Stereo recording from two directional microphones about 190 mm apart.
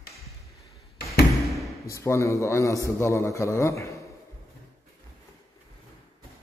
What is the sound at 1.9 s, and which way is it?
A man's voice, 15° left (ahead or behind).